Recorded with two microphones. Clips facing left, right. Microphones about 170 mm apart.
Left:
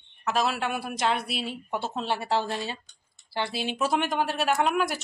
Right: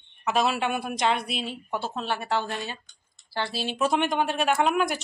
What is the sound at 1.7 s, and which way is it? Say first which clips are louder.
Speech: even; 20° left (ahead or behind).